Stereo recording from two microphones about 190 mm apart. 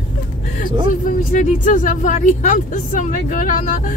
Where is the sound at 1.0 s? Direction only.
45° left (ahead or behind).